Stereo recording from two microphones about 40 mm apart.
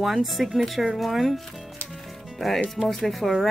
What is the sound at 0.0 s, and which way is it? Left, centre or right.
Speech, centre.